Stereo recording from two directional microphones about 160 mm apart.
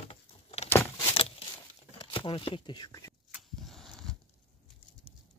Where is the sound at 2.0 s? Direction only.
35° left (ahead or behind).